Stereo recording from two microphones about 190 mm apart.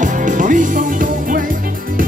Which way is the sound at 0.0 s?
40° right (ahead or behind).